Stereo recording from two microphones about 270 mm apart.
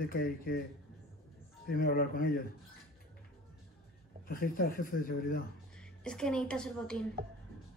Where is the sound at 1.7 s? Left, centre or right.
Left.